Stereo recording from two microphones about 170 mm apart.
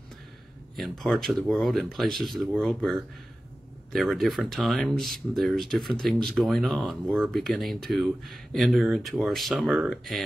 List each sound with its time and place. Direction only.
0.7 s speech: centre (ahead or behind)